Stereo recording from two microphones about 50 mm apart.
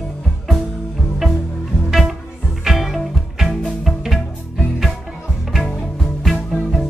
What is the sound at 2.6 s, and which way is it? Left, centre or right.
Music, centre.